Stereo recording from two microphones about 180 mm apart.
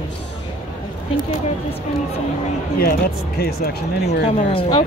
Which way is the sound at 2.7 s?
60° left (ahead or behind).